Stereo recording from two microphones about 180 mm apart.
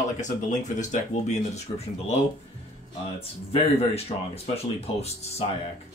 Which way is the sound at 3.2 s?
35° left (ahead or behind).